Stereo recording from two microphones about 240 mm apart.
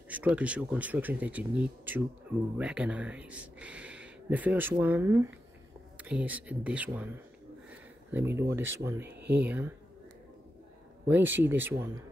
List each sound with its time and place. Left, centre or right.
0.1 s speech: centre
9.1 s speech: right
9.5 s speech: centre
11.1 s speech: centre